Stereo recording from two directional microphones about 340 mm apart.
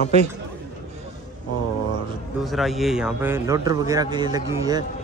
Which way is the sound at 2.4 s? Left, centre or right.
Centre.